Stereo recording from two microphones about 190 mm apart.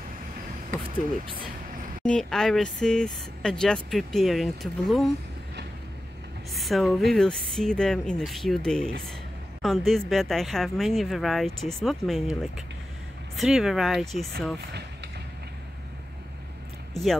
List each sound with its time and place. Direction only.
0.8 s speech: 25° right (ahead or behind)
2.0 s speech: 5° left (ahead or behind)
6.5 s speech: centre (ahead or behind)
16.9 s speech: centre (ahead or behind)